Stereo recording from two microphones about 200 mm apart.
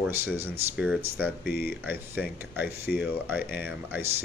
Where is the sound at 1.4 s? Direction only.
50° left (ahead or behind).